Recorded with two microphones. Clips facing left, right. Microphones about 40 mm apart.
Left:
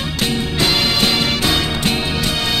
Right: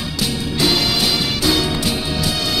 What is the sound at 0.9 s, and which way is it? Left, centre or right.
Music, left.